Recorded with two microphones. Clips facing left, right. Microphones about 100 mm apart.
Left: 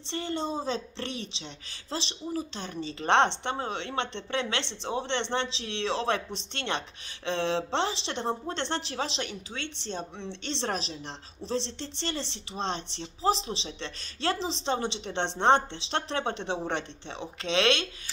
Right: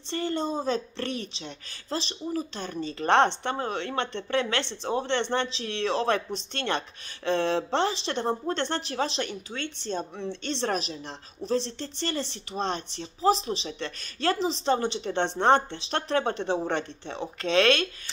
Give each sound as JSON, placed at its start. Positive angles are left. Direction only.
{"t": 0.0, "sound": "speech", "side_deg": 20}
{"t": 9.5, "sound": "speech", "side_deg": -10}
{"t": 10.4, "sound": "speech", "side_deg": 25}